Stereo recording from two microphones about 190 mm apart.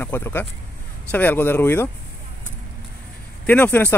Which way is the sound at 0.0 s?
10° left (ahead or behind).